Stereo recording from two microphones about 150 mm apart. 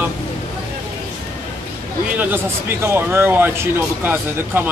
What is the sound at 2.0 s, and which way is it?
Speech, 10° right (ahead or behind).